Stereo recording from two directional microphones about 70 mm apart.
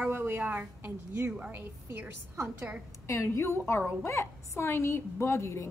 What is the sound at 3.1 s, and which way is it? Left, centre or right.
A woman's voice, left.